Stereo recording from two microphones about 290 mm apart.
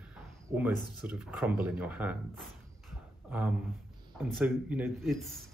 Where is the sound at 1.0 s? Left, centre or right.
Centre.